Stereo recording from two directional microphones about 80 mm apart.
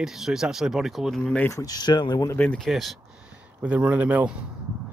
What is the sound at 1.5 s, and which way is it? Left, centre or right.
Speech, left.